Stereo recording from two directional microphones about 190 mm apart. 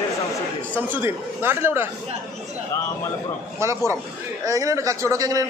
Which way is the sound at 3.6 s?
15° right (ahead or behind).